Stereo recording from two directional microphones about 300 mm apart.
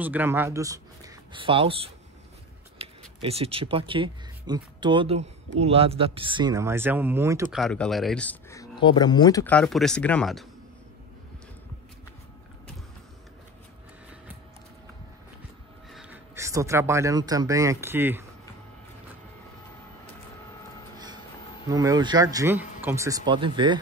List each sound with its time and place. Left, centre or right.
0.0 s speech: centre
7.6 s speech: centre
15.9 s speech: centre
21.6 s speech: centre